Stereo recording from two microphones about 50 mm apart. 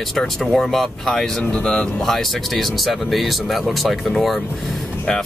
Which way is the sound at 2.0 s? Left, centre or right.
Centre.